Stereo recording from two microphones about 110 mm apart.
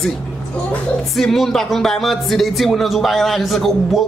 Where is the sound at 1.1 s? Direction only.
5° left (ahead or behind).